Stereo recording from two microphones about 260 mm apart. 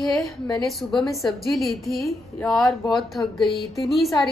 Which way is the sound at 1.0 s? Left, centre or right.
Centre.